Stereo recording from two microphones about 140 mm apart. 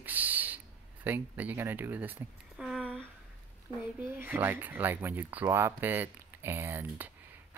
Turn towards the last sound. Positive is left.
turn(degrees=-15)  # may be behind; listen again after turning